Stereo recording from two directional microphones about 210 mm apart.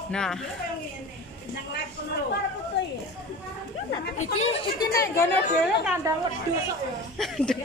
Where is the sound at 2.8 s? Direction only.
55° left (ahead or behind).